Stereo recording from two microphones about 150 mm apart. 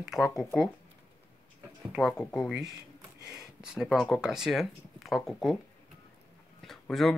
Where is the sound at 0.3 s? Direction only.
20° left (ahead or behind).